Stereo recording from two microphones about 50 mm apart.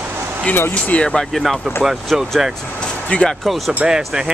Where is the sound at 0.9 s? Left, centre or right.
Left.